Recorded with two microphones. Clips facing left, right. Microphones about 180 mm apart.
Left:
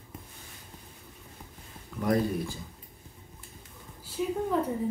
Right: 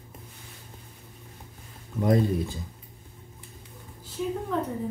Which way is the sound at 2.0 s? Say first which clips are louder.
Right 3 dB; 25° right (ahead or behind).